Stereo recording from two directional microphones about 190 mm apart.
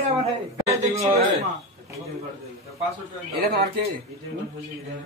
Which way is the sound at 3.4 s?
50° right (ahead or behind).